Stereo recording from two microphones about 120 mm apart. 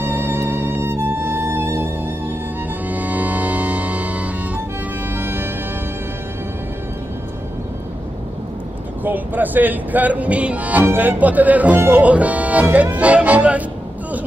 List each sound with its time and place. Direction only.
0.0 s music: 15° right (ahead or behind)
9.0 s speech: 15° right (ahead or behind)